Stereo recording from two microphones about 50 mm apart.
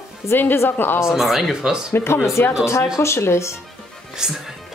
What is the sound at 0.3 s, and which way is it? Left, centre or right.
Speech, left.